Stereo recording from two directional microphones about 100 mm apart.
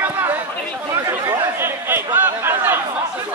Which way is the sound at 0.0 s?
20° right (ahead or behind).